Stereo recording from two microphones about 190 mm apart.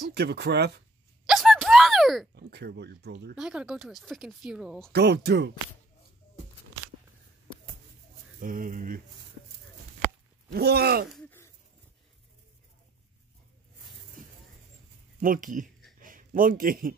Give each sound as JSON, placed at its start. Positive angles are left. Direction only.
{"t": 0.1, "sound": "speech", "side_deg": -60}
{"t": 1.2, "sound": "a sound", "side_deg": 0}
{"t": 2.3, "sound": "speech", "side_deg": -60}
{"t": 3.3, "sound": "speech", "side_deg": -5}
{"t": 4.9, "sound": "speech", "side_deg": -60}
{"t": 8.4, "sound": "speech", "side_deg": -45}
{"t": 10.5, "sound": "speech", "side_deg": -60}
{"t": 11.1, "sound": "wheeze", "side_deg": 10}
{"t": 15.1, "sound": "speech", "side_deg": -45}
{"t": 16.0, "sound": "a sound", "side_deg": -45}